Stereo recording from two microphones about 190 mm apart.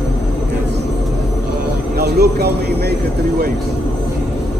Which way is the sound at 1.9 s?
55° right (ahead or behind).